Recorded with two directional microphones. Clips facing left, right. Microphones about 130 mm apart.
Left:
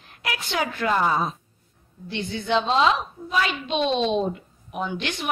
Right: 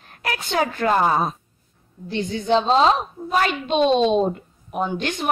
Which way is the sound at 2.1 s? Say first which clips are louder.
Right 4 dB; 40° right (ahead or behind).